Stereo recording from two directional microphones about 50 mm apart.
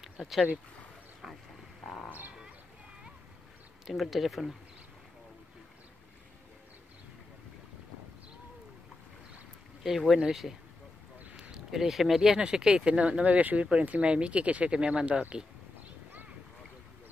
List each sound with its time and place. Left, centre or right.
2.0 s speech: right
3.8 s speech: centre
9.8 s speech: centre
11.5 s speech: centre; by 15.4 s right